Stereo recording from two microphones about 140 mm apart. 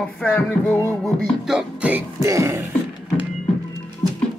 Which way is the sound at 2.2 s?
25° right (ahead or behind).